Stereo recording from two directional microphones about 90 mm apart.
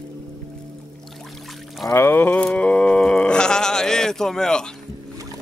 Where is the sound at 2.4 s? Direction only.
15° left (ahead or behind).